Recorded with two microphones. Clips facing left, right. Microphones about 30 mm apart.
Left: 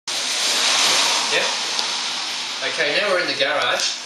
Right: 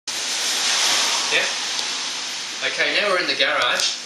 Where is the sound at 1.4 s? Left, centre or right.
Left.